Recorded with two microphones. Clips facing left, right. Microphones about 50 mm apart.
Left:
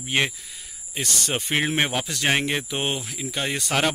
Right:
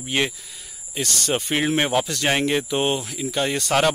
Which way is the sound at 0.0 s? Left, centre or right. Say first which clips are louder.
Even; centre.